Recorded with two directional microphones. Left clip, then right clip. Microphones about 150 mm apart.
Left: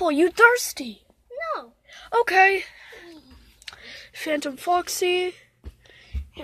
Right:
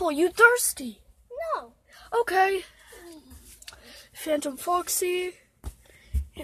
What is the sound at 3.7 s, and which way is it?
Speech, 10° left (ahead or behind).